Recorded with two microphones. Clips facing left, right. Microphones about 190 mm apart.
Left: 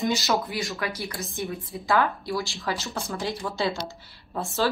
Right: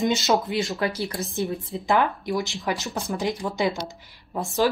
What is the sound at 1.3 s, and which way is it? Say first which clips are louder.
Speech: right 5 dB; 35° right (ahead or behind).